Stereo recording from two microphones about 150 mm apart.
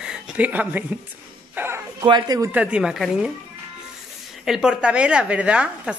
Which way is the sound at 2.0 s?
25° right (ahead or behind).